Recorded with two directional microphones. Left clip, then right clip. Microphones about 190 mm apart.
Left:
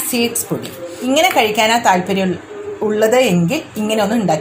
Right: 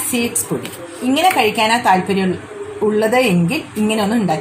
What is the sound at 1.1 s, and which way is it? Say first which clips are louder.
A woman's voice: left 1 dB; 35° left (ahead or behind).